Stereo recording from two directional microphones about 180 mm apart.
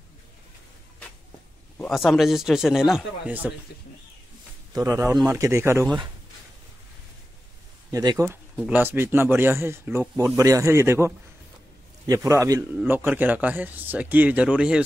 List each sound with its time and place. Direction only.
1.8 s speech: centre (ahead or behind)
4.7 s speech: 20° right (ahead or behind)
5.0 s a man's voice: 5° right (ahead or behind)
7.9 s speech: 20° right (ahead or behind)
8.6 s a man's voice: 10° right (ahead or behind)